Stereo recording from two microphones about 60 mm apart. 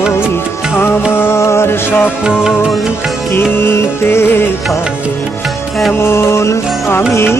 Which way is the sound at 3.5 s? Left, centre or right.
Left.